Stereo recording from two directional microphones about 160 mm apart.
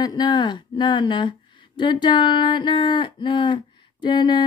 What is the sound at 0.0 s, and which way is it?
Speech, 25° left (ahead or behind).